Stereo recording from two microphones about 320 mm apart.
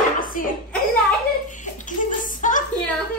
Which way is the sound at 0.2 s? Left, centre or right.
Left.